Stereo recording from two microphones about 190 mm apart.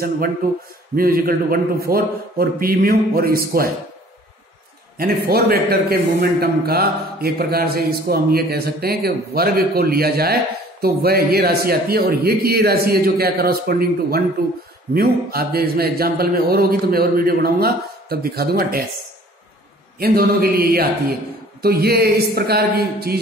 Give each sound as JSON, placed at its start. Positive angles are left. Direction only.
{"t": 0.4, "sound": "speech", "side_deg": -50}
{"t": 4.9, "sound": "speech", "side_deg": -55}
{"t": 20.0, "sound": "speech", "side_deg": -55}